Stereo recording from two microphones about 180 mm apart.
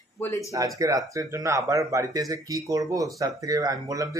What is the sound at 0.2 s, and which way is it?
Speech, 15° left (ahead or behind).